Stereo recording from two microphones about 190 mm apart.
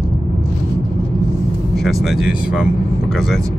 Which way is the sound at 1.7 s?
Centre (ahead or behind).